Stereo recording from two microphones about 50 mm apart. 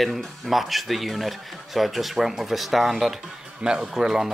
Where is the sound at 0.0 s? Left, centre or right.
Centre.